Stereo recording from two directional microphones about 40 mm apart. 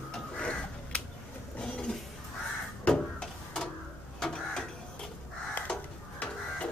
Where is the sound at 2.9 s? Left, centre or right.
Centre.